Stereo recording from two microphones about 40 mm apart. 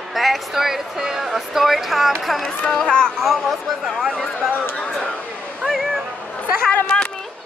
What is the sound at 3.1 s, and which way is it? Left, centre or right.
Speech, centre.